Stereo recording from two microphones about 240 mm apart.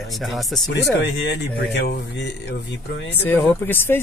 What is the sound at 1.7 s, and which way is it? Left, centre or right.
Speech, left.